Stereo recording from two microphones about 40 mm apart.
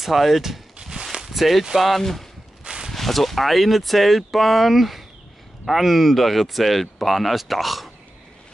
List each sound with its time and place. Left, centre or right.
0.0 s speech: centre
2.6 s a sound: right
2.9 s speech: centre